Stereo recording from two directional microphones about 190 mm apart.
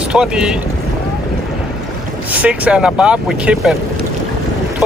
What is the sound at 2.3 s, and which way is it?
Speech, 5° right (ahead or behind).